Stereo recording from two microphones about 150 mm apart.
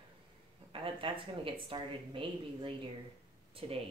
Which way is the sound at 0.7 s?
35° right (ahead or behind).